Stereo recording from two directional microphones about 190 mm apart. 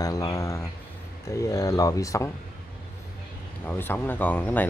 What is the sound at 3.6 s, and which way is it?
Speech, 10° left (ahead or behind).